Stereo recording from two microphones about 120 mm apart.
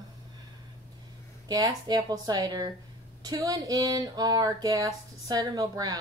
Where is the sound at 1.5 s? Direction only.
35° right (ahead or behind).